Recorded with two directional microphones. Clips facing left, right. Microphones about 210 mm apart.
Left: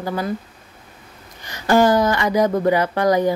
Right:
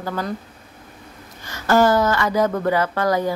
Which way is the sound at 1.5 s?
15° left (ahead or behind).